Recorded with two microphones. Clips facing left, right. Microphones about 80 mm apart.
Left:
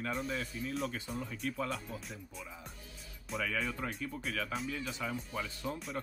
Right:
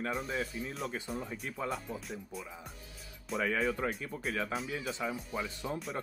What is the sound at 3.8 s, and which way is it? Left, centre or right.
Speech, right.